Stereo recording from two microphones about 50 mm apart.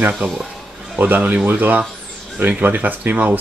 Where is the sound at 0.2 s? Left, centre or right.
Right.